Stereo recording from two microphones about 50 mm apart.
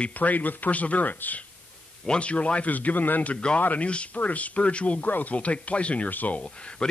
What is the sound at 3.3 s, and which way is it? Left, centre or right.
Speech, centre.